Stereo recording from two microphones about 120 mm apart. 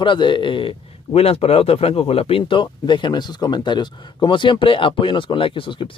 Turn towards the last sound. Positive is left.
turn(degrees=45)  # may be behind; listen again after turning